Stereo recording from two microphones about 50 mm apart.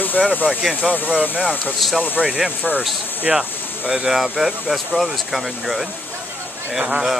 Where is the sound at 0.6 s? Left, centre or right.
Centre.